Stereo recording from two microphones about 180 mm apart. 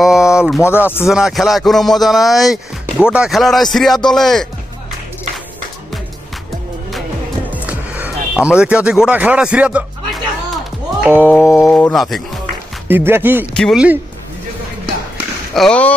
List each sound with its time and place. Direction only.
0.0 s a sound: 5° right (ahead or behind)
0.7 s speech: 10° right (ahead or behind)
7.5 s music: 10° right (ahead or behind)
11.1 s speech: 10° right (ahead or behind)
12.8 s speech: 10° right (ahead or behind)
13.5 s speech: 5° left (ahead or behind)
15.5 s speech: 5° left (ahead or behind)